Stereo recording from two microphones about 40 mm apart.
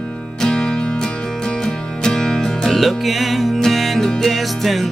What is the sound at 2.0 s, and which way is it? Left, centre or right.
Music, centre.